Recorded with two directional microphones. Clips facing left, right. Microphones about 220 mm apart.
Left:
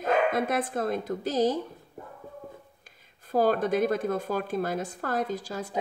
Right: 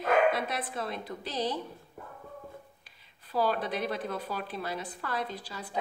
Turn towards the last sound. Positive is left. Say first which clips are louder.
# left 7 dB
turn(degrees=45)  # may be behind; listen again after turning